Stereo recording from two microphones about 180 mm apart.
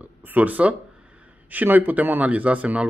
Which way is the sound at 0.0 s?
10° right (ahead or behind).